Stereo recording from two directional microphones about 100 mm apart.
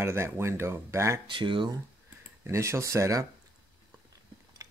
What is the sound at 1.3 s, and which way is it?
Speech, 55° right (ahead or behind).